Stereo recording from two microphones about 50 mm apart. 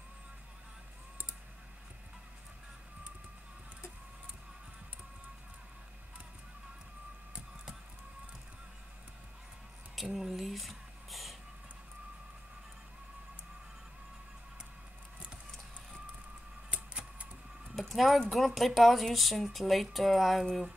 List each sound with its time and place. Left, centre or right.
10.1 s speech: centre
16.7 s a sound: right
17.7 s speech: centre